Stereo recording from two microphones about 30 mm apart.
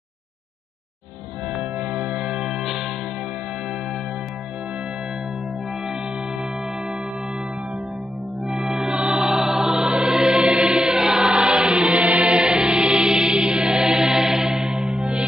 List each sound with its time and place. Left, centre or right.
1.6 s music: right
2.4 s music: centre
8.5 s music: centre
10.5 s music: right
10.9 s choir: centre
11.1 s choir: right
11.9 s chant: right
12.4 s music: right
14.5 s music: right